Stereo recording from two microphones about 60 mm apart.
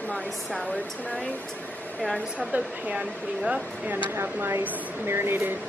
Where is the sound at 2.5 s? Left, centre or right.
Right.